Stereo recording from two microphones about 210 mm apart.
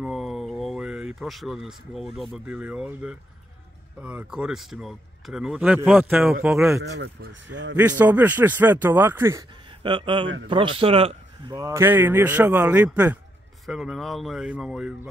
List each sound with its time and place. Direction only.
0.0 s speech: centre (ahead or behind)
6.8 s speech: 55° right (ahead or behind)
7.7 s a man's voice: 10° right (ahead or behind)